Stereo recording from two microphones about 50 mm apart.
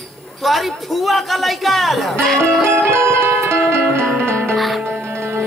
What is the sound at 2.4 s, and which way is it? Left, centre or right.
Music, right.